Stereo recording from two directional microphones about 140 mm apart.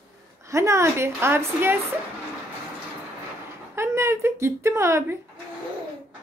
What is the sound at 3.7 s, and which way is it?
Speech, 20° right (ahead or behind).